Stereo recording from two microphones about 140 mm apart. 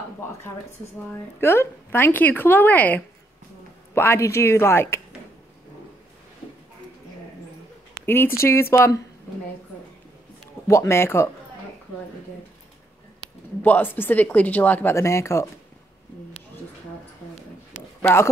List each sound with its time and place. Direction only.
1.4 s speech: 20° left (ahead or behind)
8.0 s speech: 15° left (ahead or behind)
10.7 s speech: 20° left (ahead or behind)
13.6 s speech: 15° left (ahead or behind)
18.0 s speech: 20° left (ahead or behind)